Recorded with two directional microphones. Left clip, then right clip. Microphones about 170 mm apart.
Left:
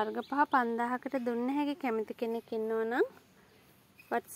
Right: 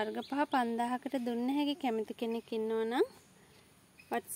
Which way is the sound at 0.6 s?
20° right (ahead or behind).